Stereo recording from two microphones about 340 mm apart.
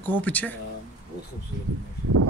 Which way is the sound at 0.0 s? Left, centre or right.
Centre.